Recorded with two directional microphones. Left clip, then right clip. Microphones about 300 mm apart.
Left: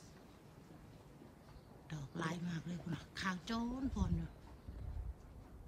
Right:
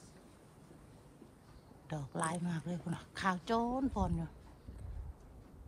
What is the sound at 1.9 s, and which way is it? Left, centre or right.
Speech, centre.